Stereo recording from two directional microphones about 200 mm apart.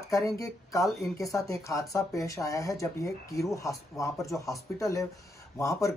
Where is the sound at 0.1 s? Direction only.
15° left (ahead or behind).